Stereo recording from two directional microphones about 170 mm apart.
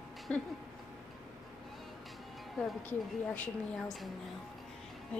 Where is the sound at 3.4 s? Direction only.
5° left (ahead or behind).